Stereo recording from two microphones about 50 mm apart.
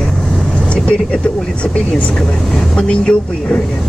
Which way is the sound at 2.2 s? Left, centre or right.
Centre.